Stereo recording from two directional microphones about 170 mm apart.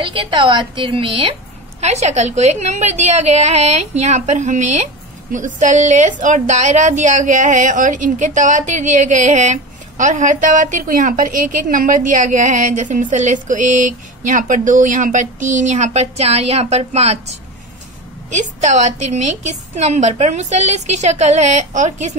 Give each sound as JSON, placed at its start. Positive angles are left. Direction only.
{"t": 0.0, "sound": "a woman's voice", "side_deg": -30}